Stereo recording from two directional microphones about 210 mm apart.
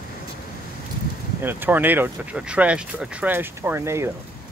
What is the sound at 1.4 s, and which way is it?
Speech, 10° right (ahead or behind).